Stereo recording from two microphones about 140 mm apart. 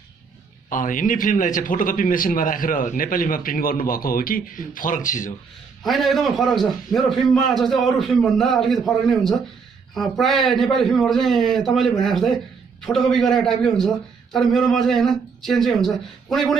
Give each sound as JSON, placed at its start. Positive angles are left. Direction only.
{"t": 0.7, "sound": "a man's voice", "side_deg": 70}
{"t": 5.9, "sound": "a man's voice", "side_deg": 0}